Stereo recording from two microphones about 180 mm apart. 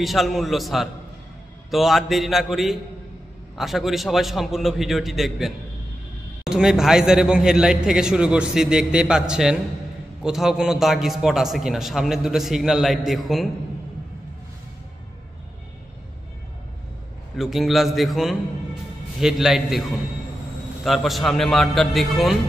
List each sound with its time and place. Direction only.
0.0 s a man's voice: centre (ahead or behind)
17.4 s a man's voice: centre (ahead or behind)
20.8 s a man's voice: centre (ahead or behind)